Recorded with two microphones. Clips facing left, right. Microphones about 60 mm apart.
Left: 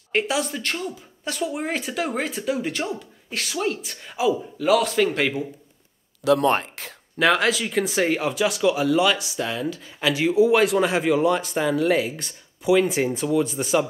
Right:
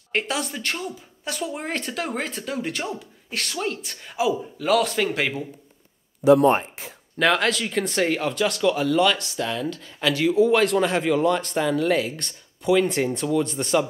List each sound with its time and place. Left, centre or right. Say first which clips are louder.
0.1 s speech: left 3 dB; centre
6.2 s speech: right 3 dB; left
7.2 s speech: left 1 dB; centre